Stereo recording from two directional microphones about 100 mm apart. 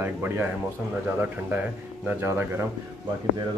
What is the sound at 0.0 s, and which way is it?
Speech, 20° right (ahead or behind).